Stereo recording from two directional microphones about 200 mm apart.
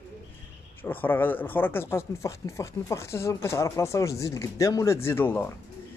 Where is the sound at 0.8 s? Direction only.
10° left (ahead or behind).